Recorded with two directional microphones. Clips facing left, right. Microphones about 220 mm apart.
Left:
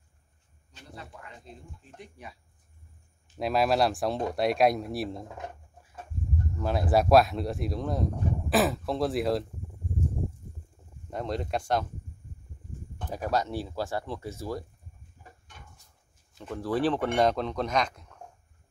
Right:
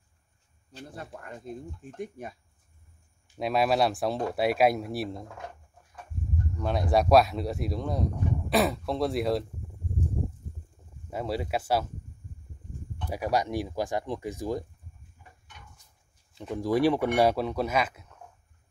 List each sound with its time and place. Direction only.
0.7 s speech: 45° right (ahead or behind)
3.3 s speech: centre (ahead or behind)
6.5 s speech: centre (ahead or behind)
11.1 s speech: 5° right (ahead or behind)
13.1 s speech: 10° right (ahead or behind)
16.3 s speech: 15° right (ahead or behind)